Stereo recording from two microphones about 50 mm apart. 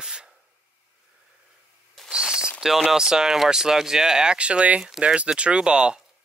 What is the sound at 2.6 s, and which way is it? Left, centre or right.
Speech, centre.